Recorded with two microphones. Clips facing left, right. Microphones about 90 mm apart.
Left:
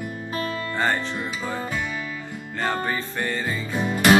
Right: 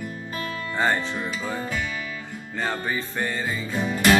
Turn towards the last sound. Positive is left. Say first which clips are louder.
# left 2 dB
turn(degrees=20)  # may be behind; listen again after turning